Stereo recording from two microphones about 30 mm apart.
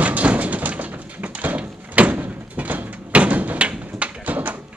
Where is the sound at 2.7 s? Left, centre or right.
Right.